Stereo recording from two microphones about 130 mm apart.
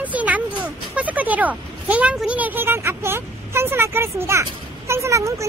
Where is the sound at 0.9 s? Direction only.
10° right (ahead or behind).